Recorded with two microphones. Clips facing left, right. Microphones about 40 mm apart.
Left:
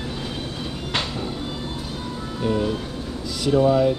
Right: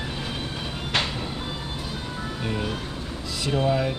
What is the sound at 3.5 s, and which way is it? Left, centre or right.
Speech, centre.